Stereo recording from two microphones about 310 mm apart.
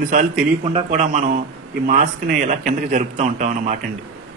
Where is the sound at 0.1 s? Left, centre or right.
Right.